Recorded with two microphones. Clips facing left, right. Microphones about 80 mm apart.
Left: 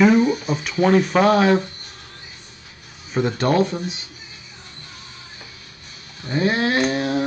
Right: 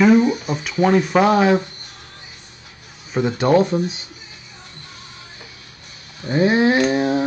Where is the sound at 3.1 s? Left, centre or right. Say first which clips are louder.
Right 1 dB; centre.